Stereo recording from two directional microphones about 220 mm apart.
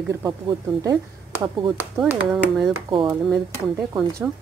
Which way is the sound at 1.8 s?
5° right (ahead or behind).